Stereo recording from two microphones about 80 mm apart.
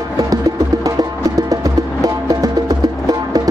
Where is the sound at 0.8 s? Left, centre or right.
Right.